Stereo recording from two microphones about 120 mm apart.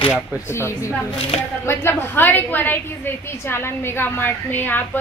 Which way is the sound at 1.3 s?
65° left (ahead or behind).